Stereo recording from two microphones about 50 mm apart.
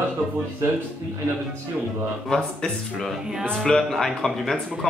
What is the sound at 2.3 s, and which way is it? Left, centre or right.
Speech, centre.